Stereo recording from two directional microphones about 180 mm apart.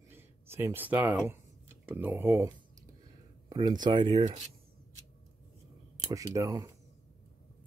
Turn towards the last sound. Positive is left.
turn(degrees=-20)  # may be behind; listen again after turning